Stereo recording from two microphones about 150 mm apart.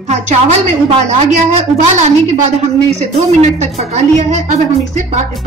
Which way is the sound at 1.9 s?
50° right (ahead or behind).